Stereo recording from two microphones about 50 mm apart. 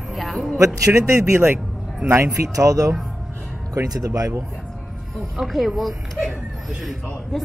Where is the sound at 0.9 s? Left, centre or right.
Right.